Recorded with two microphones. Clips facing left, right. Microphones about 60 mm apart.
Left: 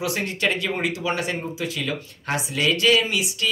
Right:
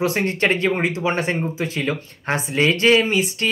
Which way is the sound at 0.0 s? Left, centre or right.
Right.